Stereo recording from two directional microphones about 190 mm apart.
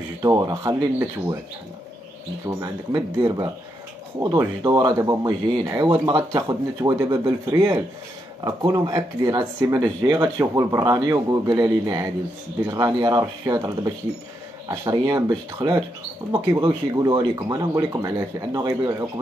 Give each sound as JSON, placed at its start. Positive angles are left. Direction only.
{"t": 0.2, "sound": "speech", "side_deg": -20}
{"t": 2.4, "sound": "speech", "side_deg": -15}